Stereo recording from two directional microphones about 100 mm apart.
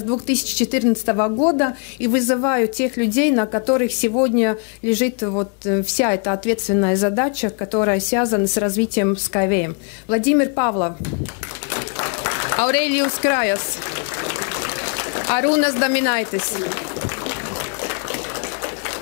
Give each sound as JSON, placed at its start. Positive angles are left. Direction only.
{"t": 0.3, "sound": "a woman's voice", "side_deg": 10}
{"t": 5.3, "sound": "a woman's voice", "side_deg": 25}
{"t": 11.7, "sound": "a sound", "side_deg": 15}